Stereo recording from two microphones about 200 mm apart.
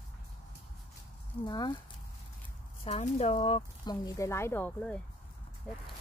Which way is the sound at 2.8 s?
30° left (ahead or behind).